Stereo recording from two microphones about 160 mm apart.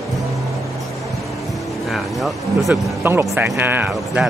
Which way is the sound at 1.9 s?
Centre (ahead or behind).